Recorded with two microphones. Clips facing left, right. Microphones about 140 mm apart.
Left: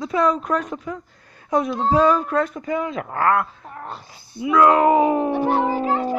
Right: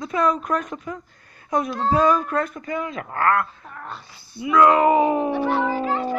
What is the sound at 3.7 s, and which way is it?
Speech, 30° left (ahead or behind).